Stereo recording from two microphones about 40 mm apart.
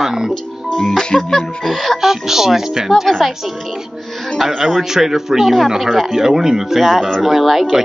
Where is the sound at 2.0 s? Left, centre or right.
Centre.